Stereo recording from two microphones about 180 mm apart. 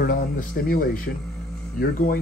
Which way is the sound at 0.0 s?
50° left (ahead or behind).